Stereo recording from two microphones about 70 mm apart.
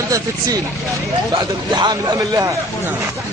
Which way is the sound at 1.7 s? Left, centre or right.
Right.